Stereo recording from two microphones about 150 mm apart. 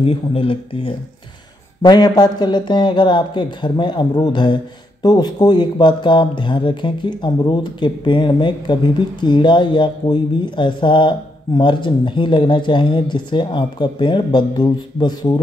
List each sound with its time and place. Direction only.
0.0 s speech: 35° left (ahead or behind)